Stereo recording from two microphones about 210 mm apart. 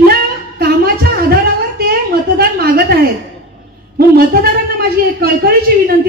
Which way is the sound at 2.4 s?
45° right (ahead or behind).